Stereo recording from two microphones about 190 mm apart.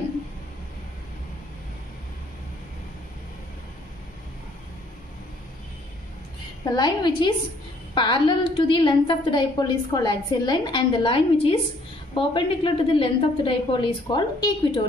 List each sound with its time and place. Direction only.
6.6 s a woman's voice: 20° left (ahead or behind)